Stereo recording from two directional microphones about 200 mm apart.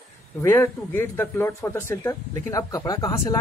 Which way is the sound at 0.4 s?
10° left (ahead or behind).